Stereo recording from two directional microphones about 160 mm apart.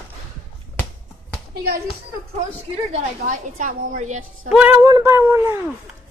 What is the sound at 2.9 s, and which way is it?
A woman's voice, 50° right (ahead or behind).